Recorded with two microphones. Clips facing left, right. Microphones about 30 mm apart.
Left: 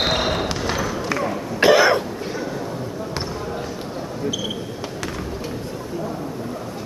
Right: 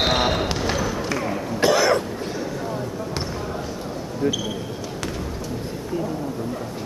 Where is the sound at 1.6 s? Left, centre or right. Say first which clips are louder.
Left 4 dB; left.